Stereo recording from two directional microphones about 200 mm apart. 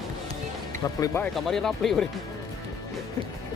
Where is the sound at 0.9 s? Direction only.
15° left (ahead or behind).